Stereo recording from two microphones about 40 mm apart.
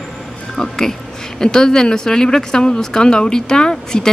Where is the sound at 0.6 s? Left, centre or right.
Centre.